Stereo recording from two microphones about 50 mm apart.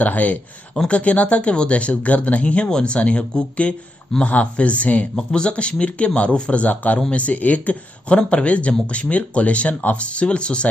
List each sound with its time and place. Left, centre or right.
0.0 s speech: left